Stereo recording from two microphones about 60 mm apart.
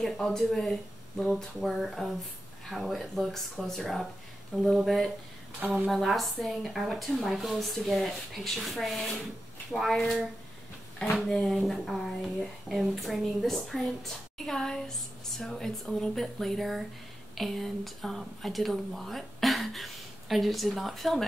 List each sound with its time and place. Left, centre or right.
0.0 s speech: centre
4.8 s speech: centre
5.6 s speech: right
5.9 s speech: centre